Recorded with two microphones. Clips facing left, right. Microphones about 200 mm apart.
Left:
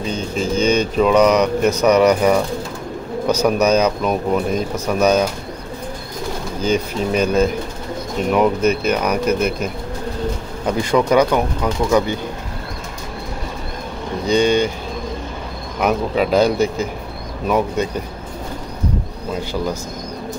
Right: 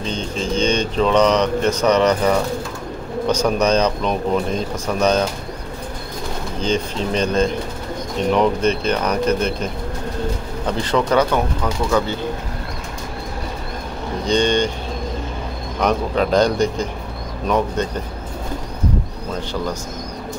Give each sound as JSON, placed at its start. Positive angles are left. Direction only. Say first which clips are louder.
{"t": 0.0, "sound": "speech", "louder": "left 2 dB", "side_deg": 10}
{"t": 6.6, "sound": "speech", "louder": "left 2 dB", "side_deg": 10}
{"t": 10.7, "sound": "speech", "louder": "left 3 dB", "side_deg": 10}
{"t": 14.2, "sound": "speech", "louder": "left 2 dB", "side_deg": 10}
{"t": 15.8, "sound": "speech", "louder": "left 1 dB", "side_deg": 5}
{"t": 19.5, "sound": "speech", "louder": "left 2 dB", "side_deg": 10}